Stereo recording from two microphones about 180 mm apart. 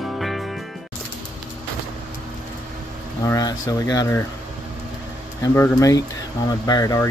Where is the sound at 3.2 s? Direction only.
20° left (ahead or behind).